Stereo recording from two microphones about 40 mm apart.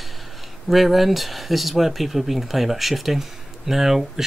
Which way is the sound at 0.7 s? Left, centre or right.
Centre.